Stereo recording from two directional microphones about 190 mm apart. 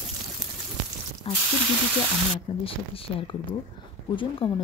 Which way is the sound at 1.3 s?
30° left (ahead or behind).